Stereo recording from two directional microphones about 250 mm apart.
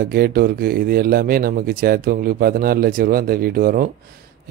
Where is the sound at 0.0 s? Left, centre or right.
Right.